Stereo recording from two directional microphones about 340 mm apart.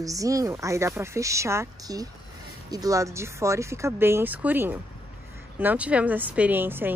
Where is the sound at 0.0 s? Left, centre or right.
Centre.